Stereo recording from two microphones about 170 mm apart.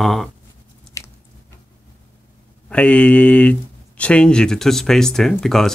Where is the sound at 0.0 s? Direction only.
Centre (ahead or behind).